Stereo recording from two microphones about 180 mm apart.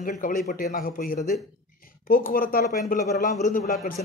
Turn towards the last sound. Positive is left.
turn(degrees=50)  # may be behind; listen again after turning